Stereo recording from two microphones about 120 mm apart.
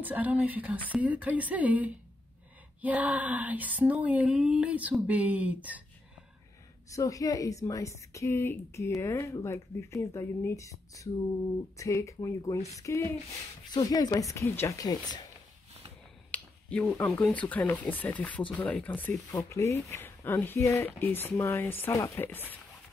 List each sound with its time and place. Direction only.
0.0 s speech: 15° right (ahead or behind)
6.9 s speech: 30° left (ahead or behind)
16.3 s speech: 10° left (ahead or behind)